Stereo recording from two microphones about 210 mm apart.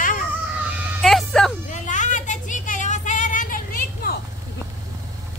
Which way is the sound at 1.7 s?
35° left (ahead or behind).